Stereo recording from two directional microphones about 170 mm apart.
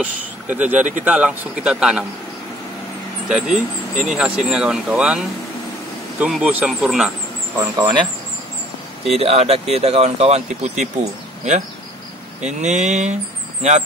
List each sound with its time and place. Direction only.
0.0 s speech: 10° right (ahead or behind)
3.3 s speech: 5° right (ahead or behind)
7.5 s speech: 20° right (ahead or behind)
9.1 s speech: 35° right (ahead or behind)
12.4 s speech: 45° right (ahead or behind)